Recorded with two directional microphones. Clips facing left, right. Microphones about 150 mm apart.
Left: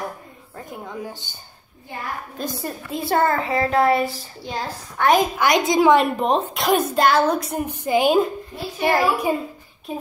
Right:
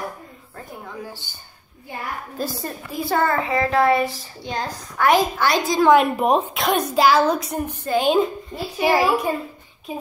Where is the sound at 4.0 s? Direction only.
Centre (ahead or behind).